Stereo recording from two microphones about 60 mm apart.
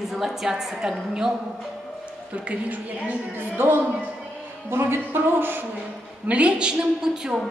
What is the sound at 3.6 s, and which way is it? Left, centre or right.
A woman's voice, right.